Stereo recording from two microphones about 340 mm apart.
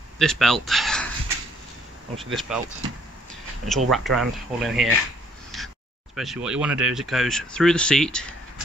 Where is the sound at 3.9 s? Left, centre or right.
Centre.